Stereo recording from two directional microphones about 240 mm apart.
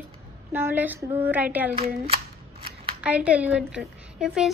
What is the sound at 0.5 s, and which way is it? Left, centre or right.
A woman's voice, centre.